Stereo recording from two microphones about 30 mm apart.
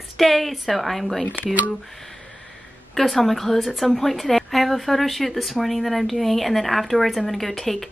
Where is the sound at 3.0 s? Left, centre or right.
Centre.